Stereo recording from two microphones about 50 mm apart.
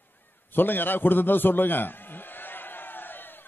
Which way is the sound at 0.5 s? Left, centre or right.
Left.